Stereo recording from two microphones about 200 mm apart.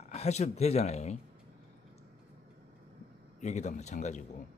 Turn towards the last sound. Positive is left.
turn(degrees=35)  # may be behind; listen again after turning